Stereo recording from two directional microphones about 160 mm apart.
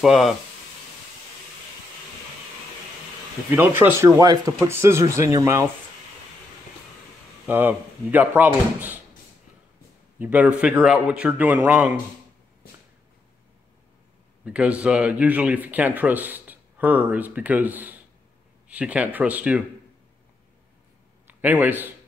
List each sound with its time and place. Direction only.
0.0 s speech: centre (ahead or behind)
4.0 s speech: 20° right (ahead or behind)
7.4 s speech: 10° right (ahead or behind)
10.1 s speech: 10° right (ahead or behind)
14.4 s speech: 10° right (ahead or behind)
21.3 s a man's voice: 10° right (ahead or behind)